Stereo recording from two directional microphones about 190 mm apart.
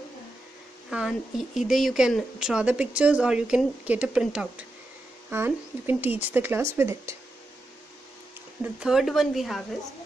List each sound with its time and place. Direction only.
0.8 s speech: centre (ahead or behind)
8.7 s speech: 5° right (ahead or behind)